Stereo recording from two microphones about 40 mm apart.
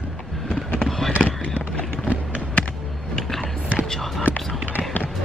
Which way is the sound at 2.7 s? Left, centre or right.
Centre.